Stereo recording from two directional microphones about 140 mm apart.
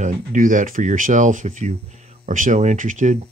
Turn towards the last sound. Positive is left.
turn(degrees=-60)  # may be behind; listen again after turning